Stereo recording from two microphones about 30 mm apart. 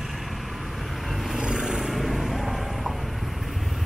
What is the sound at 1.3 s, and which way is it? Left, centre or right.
Vehicle, right.